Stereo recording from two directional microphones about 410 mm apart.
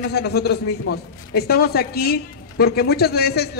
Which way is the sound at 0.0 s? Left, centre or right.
Left.